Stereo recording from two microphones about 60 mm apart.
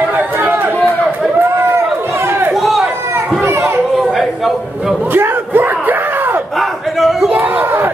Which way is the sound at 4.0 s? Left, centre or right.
Centre.